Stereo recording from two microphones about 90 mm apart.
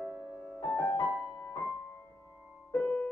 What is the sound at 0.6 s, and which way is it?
Music, 15° left (ahead or behind).